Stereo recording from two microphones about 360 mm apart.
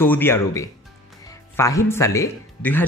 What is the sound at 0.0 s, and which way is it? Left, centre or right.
Speech, centre.